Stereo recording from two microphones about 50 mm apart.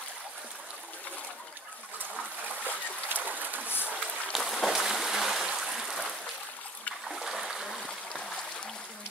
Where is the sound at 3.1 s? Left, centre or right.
Right.